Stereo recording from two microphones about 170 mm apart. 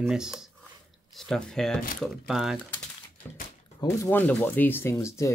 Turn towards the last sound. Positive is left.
turn(degrees=15)  # may be behind; listen again after turning